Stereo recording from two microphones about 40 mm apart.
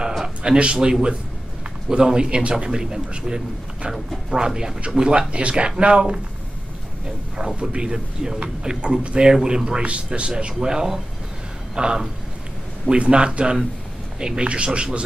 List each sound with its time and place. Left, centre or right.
0.4 s speech: right
4.3 s speech: centre
7.3 s speech: centre